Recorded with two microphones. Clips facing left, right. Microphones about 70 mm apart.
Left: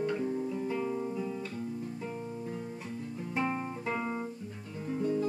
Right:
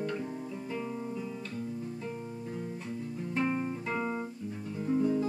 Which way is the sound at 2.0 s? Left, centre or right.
Centre.